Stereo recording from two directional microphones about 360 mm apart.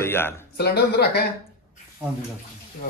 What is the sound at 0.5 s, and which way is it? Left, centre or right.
Speech, left.